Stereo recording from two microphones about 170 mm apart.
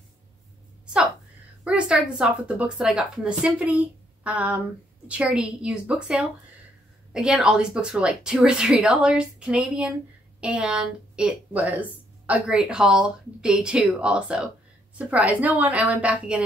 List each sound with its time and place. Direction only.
1.6 s speech: 5° right (ahead or behind)